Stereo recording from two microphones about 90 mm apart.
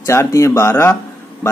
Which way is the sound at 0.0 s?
30° left (ahead or behind).